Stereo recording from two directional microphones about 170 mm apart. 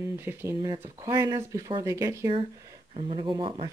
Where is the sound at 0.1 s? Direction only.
15° right (ahead or behind).